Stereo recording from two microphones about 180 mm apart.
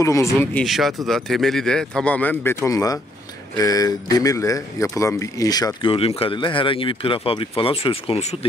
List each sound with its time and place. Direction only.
0.0 s speech: 15° left (ahead or behind)
0.7 s speech: centre (ahead or behind); by 8.5 s 35° left (ahead or behind)